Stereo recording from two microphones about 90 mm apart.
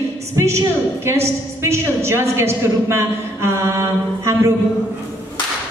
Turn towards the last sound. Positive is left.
turn(degrees=-30)  # may be behind; listen again after turning